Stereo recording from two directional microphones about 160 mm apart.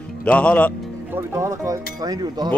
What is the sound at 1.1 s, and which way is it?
Speech, 15° right (ahead or behind).